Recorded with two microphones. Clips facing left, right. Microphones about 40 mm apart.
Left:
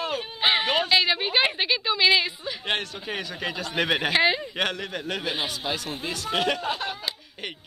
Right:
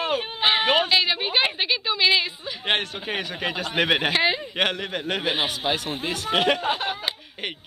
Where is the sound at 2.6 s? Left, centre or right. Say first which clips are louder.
Right 4 dB; right.